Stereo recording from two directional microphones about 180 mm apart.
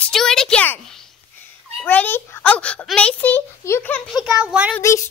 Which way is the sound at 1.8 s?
10° left (ahead or behind).